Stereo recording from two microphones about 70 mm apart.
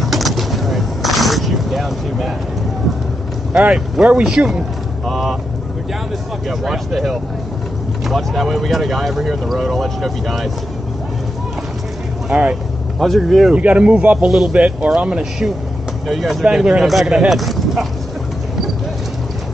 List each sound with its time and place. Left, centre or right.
0.0 s a sound: centre
3.5 s speech: centre
6.6 s speech: centre
12.3 s speech: centre
13.0 s speech: centre
13.6 s speech: centre
14.5 s speech: centre